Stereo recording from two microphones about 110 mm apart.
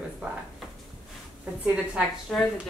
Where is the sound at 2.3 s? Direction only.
Centre (ahead or behind).